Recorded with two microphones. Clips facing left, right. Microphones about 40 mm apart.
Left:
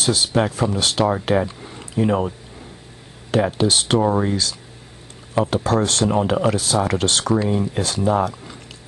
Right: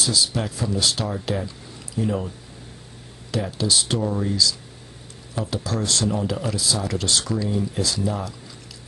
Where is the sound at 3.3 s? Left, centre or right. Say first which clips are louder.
Left 6 dB; left.